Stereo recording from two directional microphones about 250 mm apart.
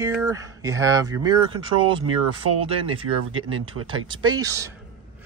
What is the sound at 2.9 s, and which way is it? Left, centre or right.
Speech, right.